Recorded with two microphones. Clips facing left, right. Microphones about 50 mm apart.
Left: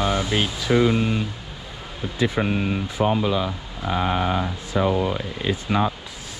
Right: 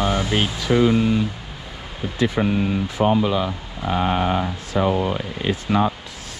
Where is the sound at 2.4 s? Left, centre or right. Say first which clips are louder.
Right 3 dB; left.